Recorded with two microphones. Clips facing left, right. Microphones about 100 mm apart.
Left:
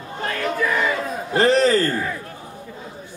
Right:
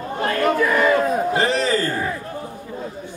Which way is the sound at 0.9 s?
45° right (ahead or behind).